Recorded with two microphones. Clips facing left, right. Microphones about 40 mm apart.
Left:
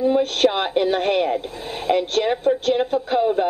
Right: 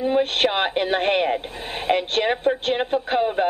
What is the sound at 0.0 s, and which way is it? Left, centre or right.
A woman's voice, right.